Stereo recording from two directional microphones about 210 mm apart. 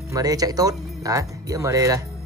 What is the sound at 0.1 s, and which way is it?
Speech, 15° right (ahead or behind).